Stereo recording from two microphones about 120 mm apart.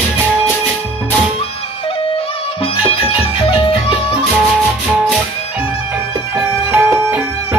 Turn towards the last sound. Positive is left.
turn(degrees=-15)  # may be behind; listen again after turning